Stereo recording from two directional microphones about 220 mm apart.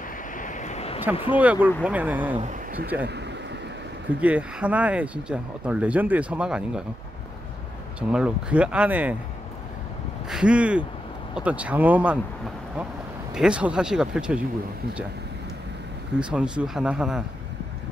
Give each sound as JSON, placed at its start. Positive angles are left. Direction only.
{"t": 0.4, "sound": "vehicle", "side_deg": 35}
{"t": 1.1, "sound": "speech", "side_deg": 25}
{"t": 1.4, "sound": "speech", "side_deg": -5}
{"t": 3.0, "sound": "speech", "side_deg": -50}
{"t": 4.2, "sound": "speech", "side_deg": -5}
{"t": 8.1, "sound": "speech", "side_deg": -5}
{"t": 10.3, "sound": "speech", "side_deg": -5}
{"t": 13.3, "sound": "speech", "side_deg": -5}
{"t": 16.2, "sound": "speech", "side_deg": -5}